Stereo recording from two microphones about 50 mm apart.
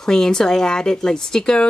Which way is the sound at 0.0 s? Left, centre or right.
Centre.